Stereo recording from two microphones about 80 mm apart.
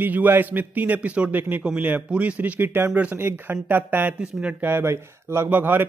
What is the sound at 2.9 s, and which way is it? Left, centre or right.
Music, centre.